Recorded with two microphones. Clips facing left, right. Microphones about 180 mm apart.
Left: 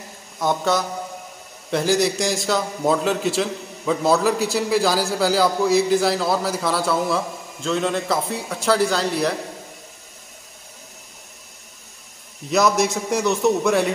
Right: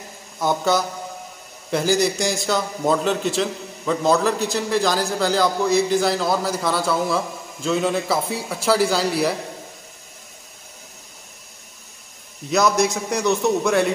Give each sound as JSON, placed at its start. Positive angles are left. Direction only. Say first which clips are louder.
{"t": 0.4, "sound": "a man's voice", "louder": "right 1 dB", "side_deg": 0}
{"t": 12.4, "sound": "a man's voice", "louder": "even", "side_deg": 0}